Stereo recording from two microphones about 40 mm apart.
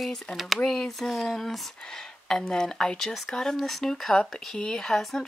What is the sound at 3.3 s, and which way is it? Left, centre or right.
Speech, centre.